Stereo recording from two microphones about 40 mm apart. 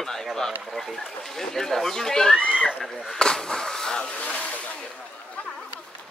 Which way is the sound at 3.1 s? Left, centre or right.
Centre.